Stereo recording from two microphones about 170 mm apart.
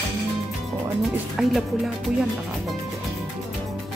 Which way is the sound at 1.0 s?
Centre (ahead or behind).